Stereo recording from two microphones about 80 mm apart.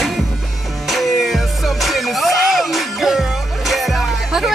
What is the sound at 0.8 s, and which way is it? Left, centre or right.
Music, centre.